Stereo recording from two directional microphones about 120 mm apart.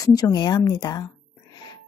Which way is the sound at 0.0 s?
30° left (ahead or behind).